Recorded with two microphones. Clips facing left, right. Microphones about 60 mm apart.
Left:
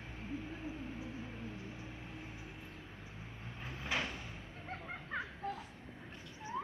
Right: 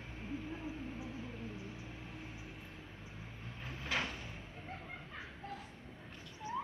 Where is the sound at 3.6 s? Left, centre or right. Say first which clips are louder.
Even; left.